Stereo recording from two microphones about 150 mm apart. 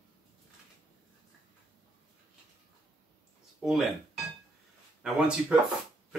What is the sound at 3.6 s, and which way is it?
Music, centre (ahead or behind).